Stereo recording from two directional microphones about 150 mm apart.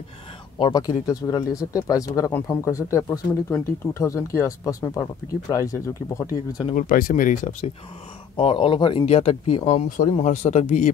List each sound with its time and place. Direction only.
0.6 s speech: 30° left (ahead or behind)
6.7 s speech: 65° left (ahead or behind)
8.4 s speech: 35° left (ahead or behind); by 10.9 s 55° left (ahead or behind)